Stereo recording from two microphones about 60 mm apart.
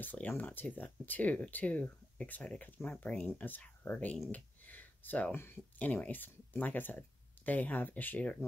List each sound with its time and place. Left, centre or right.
0.0 s speech: left
4.3 s a sound: left
5.3 s speech: left
5.8 s speech: left